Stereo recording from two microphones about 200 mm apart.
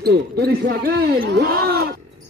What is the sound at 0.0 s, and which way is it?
Speech, 50° right (ahead or behind).